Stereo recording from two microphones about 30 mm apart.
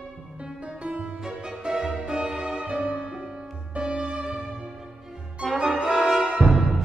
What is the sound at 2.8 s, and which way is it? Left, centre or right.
Music, right.